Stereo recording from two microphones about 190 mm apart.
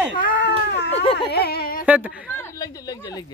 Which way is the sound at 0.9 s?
30° left (ahead or behind).